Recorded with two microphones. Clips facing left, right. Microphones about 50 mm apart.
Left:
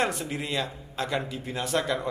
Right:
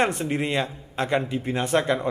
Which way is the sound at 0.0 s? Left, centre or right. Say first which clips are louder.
Right 5 dB; right.